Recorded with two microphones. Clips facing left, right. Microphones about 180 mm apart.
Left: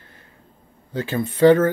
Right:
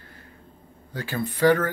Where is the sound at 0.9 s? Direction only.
20° left (ahead or behind).